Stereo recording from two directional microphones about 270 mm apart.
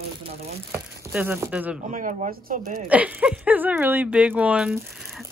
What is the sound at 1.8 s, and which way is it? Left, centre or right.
Speech, right.